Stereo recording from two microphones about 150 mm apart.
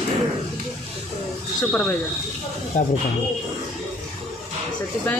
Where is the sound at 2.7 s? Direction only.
55° left (ahead or behind).